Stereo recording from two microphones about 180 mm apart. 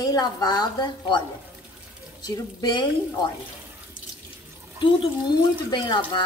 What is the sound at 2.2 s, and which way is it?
Speech, 20° left (ahead or behind).